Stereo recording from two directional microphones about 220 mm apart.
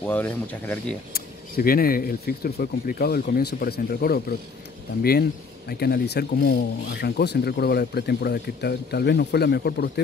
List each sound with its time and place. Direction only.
0.0 s speech: 10° left (ahead or behind)
1.1 s speech: 40° left (ahead or behind)
5.7 s speech: 45° left (ahead or behind)